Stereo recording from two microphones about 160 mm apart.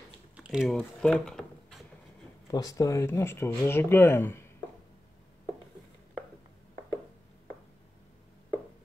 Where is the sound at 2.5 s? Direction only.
20° left (ahead or behind).